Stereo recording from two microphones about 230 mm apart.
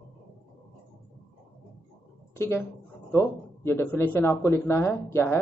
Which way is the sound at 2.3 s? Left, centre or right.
Centre.